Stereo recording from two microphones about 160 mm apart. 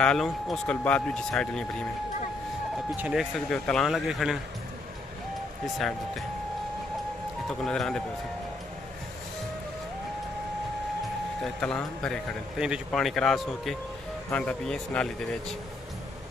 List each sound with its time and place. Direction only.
0.0 s a man's voice: 5° left (ahead or behind)
3.0 s a man's voice: 5° right (ahead or behind)
5.8 s a man's voice: centre (ahead or behind)
7.6 s a man's voice: 5° left (ahead or behind)
11.4 s a man's voice: 5° left (ahead or behind)